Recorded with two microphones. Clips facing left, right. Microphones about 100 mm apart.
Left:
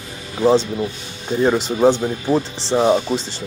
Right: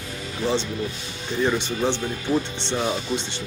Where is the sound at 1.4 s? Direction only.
35° left (ahead or behind).